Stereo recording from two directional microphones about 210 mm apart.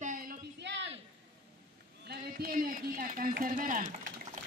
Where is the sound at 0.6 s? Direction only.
55° right (ahead or behind).